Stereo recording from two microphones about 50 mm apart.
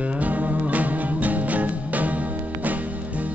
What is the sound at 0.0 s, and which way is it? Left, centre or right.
Music, right.